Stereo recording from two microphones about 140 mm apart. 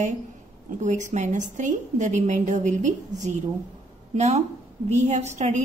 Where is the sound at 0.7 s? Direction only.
60° right (ahead or behind).